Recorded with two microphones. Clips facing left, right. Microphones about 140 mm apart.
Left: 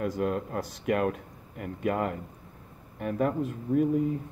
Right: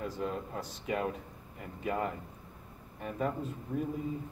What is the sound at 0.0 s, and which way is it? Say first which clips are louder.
Speech: left 7 dB; 70° left (ahead or behind).